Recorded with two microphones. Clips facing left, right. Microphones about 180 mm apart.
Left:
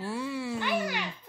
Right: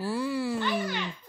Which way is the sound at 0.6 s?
10° left (ahead or behind).